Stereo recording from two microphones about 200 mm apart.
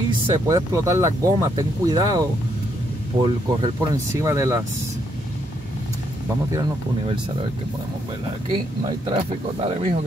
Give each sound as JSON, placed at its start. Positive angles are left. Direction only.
{"t": 0.3, "sound": "speech", "side_deg": -15}
{"t": 6.5, "sound": "speech", "side_deg": -20}
{"t": 9.0, "sound": "speech", "side_deg": -30}